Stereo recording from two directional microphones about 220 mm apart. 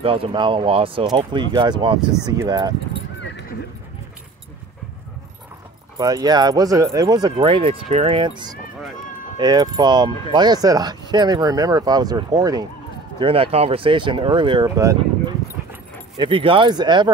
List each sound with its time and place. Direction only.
0.0 s speech: 25° right (ahead or behind)
5.9 s speech: 15° right (ahead or behind)
9.4 s speech: 20° right (ahead or behind)